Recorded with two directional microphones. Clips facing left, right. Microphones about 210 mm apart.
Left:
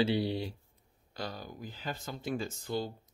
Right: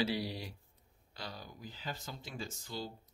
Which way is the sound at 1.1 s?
50° left (ahead or behind).